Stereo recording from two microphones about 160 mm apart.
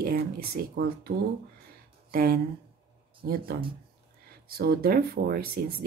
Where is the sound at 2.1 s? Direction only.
70° right (ahead or behind).